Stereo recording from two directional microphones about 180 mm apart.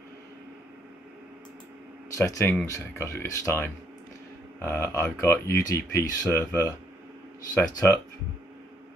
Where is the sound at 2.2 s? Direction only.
15° left (ahead or behind).